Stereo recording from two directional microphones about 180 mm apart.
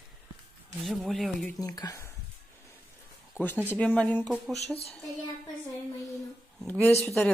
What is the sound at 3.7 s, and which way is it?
Speech, 10° left (ahead or behind).